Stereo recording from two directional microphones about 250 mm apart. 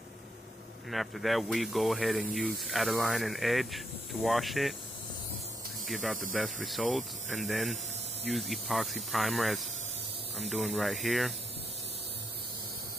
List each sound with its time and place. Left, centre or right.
0.8 s speech: centre
5.9 s speech: centre